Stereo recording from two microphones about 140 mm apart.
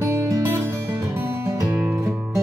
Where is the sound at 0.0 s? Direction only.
20° right (ahead or behind).